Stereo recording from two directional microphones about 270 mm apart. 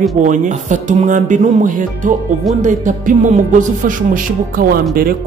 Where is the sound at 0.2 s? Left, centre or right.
Right.